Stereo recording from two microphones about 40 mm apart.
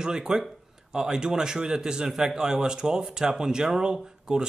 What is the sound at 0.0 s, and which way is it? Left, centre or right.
A man's voice, centre.